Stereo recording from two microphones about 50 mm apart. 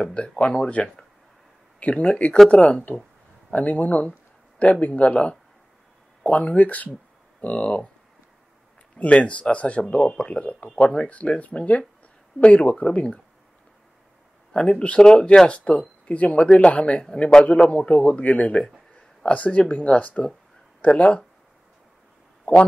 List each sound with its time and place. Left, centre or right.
0.1 s speech: centre
8.9 s speech: left
14.5 s speech: centre
20.9 s speech: centre
22.4 s a sound: left